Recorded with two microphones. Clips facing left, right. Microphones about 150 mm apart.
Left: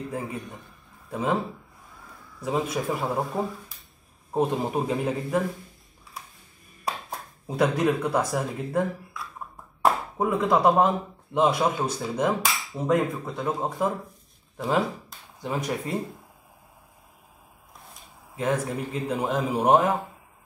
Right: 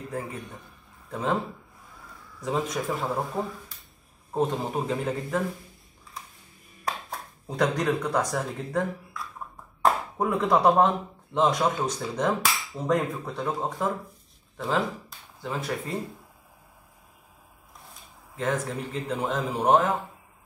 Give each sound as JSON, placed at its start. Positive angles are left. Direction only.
{"t": 0.1, "sound": "speech", "side_deg": 10}
{"t": 2.4, "sound": "speech", "side_deg": 10}
{"t": 6.8, "sound": "speech", "side_deg": 10}
{"t": 15.4, "sound": "speech", "side_deg": 15}
{"t": 18.3, "sound": "speech", "side_deg": 10}